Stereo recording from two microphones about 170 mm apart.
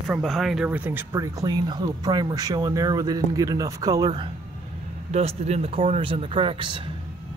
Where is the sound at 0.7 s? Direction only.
10° right (ahead or behind).